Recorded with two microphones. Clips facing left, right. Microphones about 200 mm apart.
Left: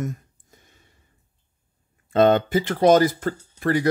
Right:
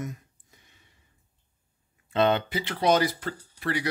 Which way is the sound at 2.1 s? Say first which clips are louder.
Left 7 dB; 45° left (ahead or behind).